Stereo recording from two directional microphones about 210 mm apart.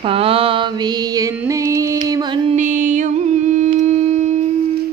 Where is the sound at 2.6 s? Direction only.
40° right (ahead or behind).